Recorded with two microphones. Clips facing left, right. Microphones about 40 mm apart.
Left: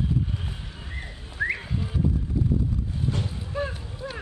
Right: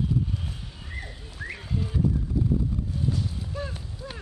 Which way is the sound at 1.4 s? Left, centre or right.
Left.